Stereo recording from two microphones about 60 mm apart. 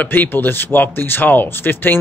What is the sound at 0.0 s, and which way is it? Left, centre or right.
Speech, left.